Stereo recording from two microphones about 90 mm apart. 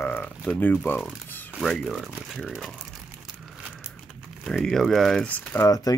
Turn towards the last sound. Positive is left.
turn(degrees=40)  # may be behind; listen again after turning